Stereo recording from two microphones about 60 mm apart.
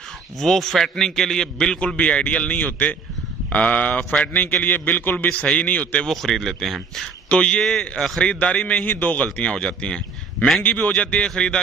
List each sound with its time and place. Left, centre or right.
0.4 s a man's voice: centre
2.0 s a man's voice: left
6.0 s a man's voice: centre
7.2 s speech: centre
10.6 s a man's voice: left